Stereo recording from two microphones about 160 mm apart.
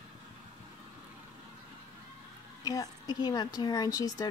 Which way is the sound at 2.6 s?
25° left (ahead or behind).